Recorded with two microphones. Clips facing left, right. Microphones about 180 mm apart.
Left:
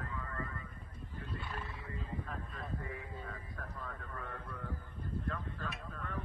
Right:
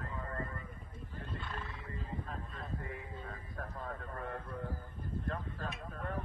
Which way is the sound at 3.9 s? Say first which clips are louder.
Right 4 dB; 40° right (ahead or behind).